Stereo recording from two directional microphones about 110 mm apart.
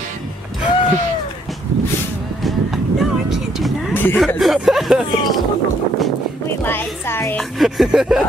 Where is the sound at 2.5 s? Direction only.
Centre (ahead or behind).